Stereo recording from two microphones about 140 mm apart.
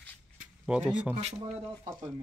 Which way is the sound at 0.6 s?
5° right (ahead or behind).